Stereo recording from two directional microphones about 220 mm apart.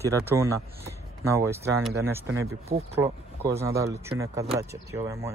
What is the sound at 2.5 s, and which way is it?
Speech, 30° right (ahead or behind).